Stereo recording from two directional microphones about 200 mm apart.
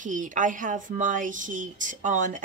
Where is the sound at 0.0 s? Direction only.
40° right (ahead or behind).